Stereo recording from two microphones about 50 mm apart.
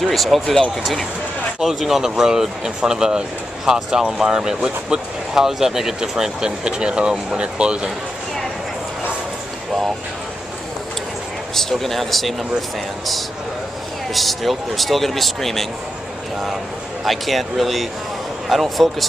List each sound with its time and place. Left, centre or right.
0.0 s speech: centre
1.6 s speech: centre; by 7.9 s right
11.5 s speech: centre
14.1 s speech: centre
17.0 s speech: centre